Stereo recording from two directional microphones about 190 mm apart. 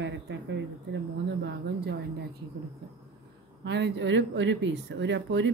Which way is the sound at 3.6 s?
65° right (ahead or behind).